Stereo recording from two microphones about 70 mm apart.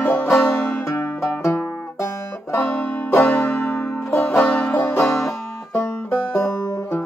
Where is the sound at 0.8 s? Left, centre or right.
Left.